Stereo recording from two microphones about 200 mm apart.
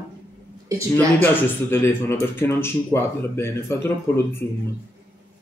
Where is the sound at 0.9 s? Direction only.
10° left (ahead or behind).